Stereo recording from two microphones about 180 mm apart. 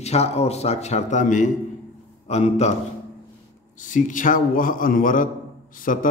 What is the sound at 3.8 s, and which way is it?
A man's voice, 45° left (ahead or behind).